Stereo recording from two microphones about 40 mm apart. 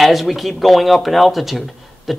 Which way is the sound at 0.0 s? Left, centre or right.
Centre.